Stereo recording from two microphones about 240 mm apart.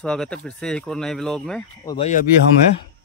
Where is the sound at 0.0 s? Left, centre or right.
Centre.